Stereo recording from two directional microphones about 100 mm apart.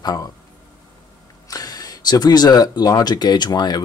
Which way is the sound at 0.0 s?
45° left (ahead or behind).